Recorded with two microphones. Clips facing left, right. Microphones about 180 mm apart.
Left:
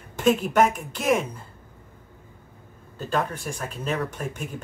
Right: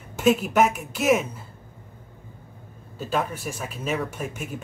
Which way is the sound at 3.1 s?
5° right (ahead or behind).